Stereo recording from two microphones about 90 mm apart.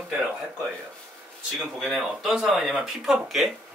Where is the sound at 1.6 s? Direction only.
Centre (ahead or behind).